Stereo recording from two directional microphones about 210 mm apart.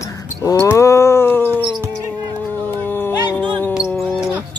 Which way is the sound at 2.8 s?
10° left (ahead or behind).